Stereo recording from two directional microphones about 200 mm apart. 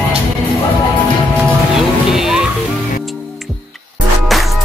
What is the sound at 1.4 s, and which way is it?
Music, centre (ahead or behind).